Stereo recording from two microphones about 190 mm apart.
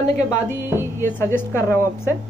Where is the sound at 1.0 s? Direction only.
10° left (ahead or behind).